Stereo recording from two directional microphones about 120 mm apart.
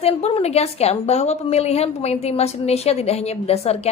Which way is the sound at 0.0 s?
60° left (ahead or behind).